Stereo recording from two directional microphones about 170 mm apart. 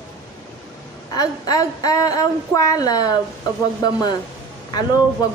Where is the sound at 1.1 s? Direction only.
25° left (ahead or behind).